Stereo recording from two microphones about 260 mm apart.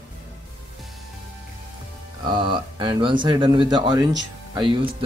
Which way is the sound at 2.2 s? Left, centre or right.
Centre.